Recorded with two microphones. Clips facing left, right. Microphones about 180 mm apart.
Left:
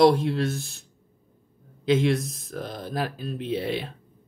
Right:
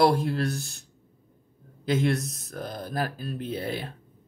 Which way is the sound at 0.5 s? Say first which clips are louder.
Left 1 dB; centre (ahead or behind).